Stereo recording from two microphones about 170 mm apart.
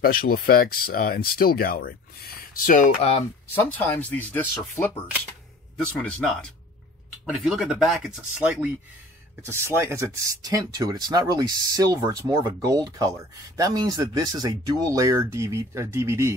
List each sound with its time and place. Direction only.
0.0 s speech: 60° left (ahead or behind); by 3.3 s 35° left (ahead or behind)
3.5 s speech: 10° left (ahead or behind); by 16.3 s 15° right (ahead or behind)